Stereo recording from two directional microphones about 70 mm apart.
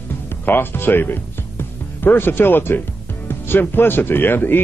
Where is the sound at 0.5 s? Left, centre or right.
Left.